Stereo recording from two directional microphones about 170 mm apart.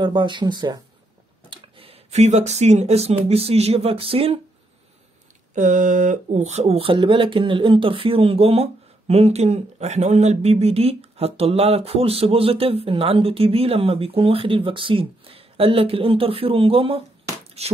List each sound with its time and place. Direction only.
0.0 s speech: 25° right (ahead or behind)
5.5 s speech: 45° right (ahead or behind)